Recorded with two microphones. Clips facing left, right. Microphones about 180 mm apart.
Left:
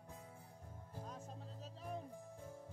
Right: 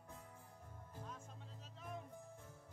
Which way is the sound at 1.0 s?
35° left (ahead or behind).